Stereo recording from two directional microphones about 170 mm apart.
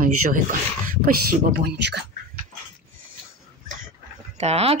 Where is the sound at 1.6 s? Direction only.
75° right (ahead or behind).